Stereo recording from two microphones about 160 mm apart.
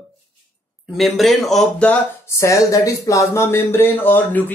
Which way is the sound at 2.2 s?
20° left (ahead or behind).